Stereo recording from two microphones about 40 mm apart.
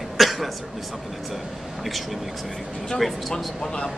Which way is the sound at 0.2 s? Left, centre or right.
Centre.